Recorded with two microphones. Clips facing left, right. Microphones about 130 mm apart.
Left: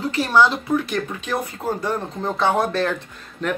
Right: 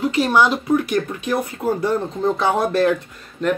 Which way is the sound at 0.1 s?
15° right (ahead or behind).